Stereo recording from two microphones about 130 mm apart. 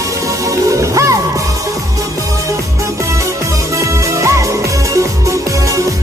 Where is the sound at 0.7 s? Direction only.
25° right (ahead or behind).